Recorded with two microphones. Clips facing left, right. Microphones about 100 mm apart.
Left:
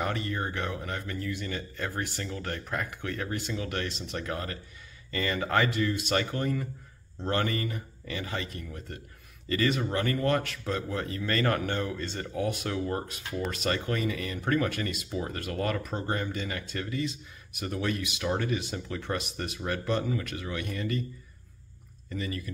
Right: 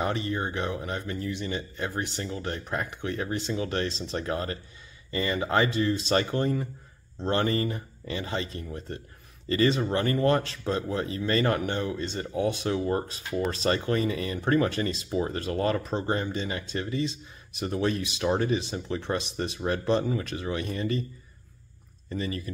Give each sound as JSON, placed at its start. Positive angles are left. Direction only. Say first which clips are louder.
{"t": 0.0, "sound": "speech", "louder": "right 3 dB", "side_deg": -20}
{"t": 22.1, "sound": "speech", "louder": "right 3 dB", "side_deg": -30}